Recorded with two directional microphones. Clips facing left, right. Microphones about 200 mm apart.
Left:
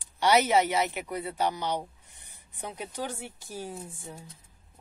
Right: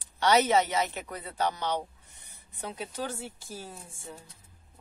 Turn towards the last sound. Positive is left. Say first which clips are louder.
# left 4 dB
turn(degrees=15)  # may be behind; listen again after turning